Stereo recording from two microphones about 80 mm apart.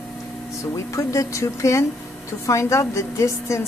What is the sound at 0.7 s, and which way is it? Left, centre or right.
A woman's voice, left.